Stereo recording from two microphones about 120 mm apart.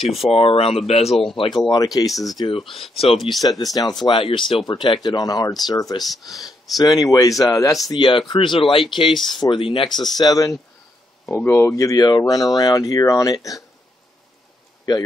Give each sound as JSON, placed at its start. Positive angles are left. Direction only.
{"t": 0.0, "sound": "speech", "side_deg": 0}
{"t": 0.3, "sound": "speech", "side_deg": 55}
{"t": 1.3, "sound": "speech", "side_deg": 45}
{"t": 1.7, "sound": "speech", "side_deg": 30}
{"t": 2.3, "sound": "speech", "side_deg": 45}
{"t": 9.9, "sound": "speech", "side_deg": 35}
{"t": 11.2, "sound": "speech", "side_deg": 20}